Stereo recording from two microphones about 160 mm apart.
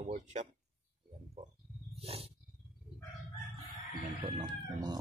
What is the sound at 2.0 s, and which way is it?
Wild animals, 40° right (ahead or behind).